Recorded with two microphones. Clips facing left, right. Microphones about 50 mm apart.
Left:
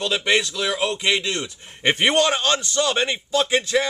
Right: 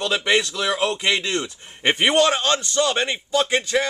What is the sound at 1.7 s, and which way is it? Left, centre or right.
A man's voice, centre.